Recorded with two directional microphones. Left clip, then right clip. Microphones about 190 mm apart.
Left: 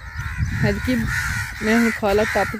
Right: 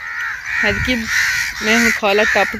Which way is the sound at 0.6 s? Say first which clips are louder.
Right 6 dB; 30° left (ahead or behind).